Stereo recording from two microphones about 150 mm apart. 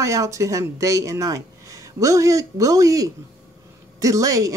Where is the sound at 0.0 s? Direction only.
20° right (ahead or behind).